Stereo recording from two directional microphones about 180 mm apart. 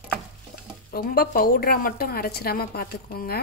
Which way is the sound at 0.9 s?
55° left (ahead or behind).